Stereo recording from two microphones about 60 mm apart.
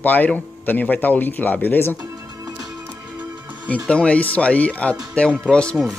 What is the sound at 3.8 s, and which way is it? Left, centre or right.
Speech, left.